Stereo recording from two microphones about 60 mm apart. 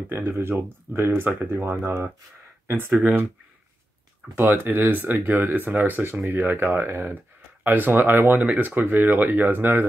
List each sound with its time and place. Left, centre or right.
0.1 s speech: right
2.9 s speech: centre
4.4 s speech: right